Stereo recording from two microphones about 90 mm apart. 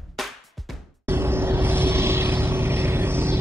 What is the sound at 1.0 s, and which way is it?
Vehicle, 25° right (ahead or behind).